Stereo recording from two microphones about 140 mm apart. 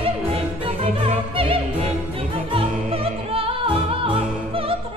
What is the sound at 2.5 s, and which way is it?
Music, 40° right (ahead or behind).